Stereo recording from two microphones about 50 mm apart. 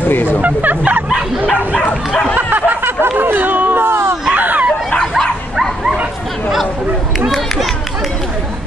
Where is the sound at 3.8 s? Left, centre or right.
Right.